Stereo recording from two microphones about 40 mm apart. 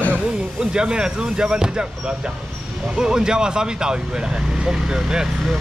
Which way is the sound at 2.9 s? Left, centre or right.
Centre.